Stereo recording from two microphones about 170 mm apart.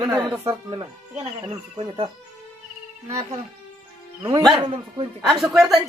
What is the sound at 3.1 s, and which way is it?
Speech, 20° right (ahead or behind).